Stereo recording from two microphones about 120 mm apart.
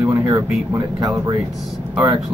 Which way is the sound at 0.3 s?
30° right (ahead or behind).